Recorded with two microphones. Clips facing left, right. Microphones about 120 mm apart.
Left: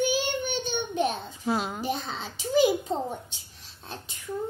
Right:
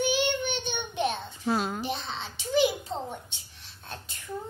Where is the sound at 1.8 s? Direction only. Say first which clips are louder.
Left 2 dB; 45° left (ahead or behind).